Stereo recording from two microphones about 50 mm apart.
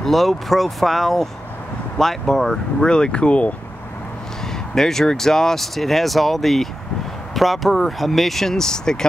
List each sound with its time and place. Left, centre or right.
0.0 s speech: centre
2.9 s speech: centre
4.5 s speech: centre